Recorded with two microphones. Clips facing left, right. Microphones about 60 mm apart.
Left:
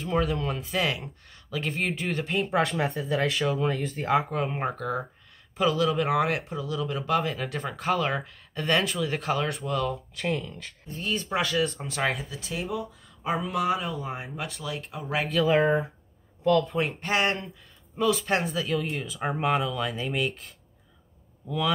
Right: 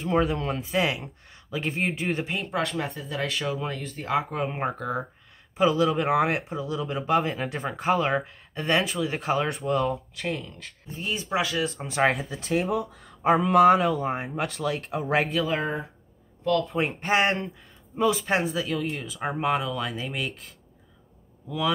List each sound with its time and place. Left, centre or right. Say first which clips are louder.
0.1 s speech: right 2 dB; right
2.3 s speech: left 3 dB; centre; by 9.9 s right
10.1 s speech: left 2 dB; centre
11.0 s speech: right 1 dB; centre
12.3 s speech: right 6 dB; right
14.0 s speech: right 6 dB; right
14.4 s speech: right 6 dB; right
15.4 s speech: left 6 dB; centre
16.6 s speech: right 1 dB; centre
17.0 s speech: right 5 dB; right; by 21.7 s centre